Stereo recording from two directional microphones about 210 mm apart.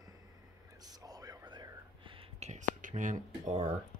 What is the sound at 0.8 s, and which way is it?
Whispering, 20° right (ahead or behind).